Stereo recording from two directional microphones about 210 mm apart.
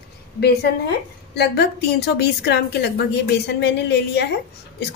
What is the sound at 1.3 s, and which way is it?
A woman's voice, 50° left (ahead or behind).